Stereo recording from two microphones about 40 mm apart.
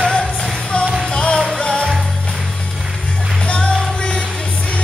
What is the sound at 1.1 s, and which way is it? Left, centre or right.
Music, left.